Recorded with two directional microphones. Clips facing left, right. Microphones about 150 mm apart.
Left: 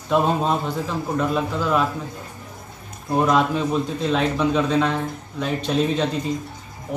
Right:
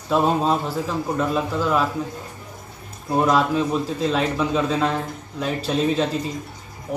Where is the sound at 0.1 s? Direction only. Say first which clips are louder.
Right 1 dB; centre (ahead or behind).